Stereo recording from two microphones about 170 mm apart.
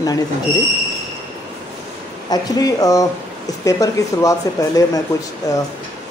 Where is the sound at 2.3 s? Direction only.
20° left (ahead or behind).